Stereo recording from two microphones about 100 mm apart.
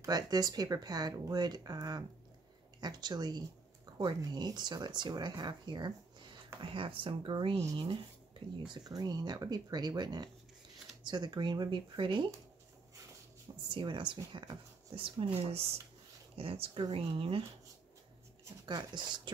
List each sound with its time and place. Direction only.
0.0 s speech: 40° right (ahead or behind)
6.6 s speech: 60° right (ahead or behind)
8.8 s speech: 40° right (ahead or behind)
13.7 s speech: 55° right (ahead or behind)
16.3 s speech: 70° right (ahead or behind)
18.7 s speech: 45° right (ahead or behind)